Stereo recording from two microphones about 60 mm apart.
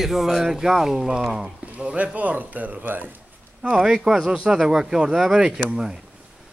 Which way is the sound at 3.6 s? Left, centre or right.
Centre.